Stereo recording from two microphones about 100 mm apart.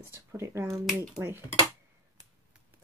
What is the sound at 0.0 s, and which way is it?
Speech, 25° right (ahead or behind).